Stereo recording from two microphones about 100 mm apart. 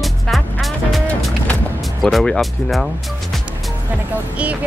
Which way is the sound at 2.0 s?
5° left (ahead or behind).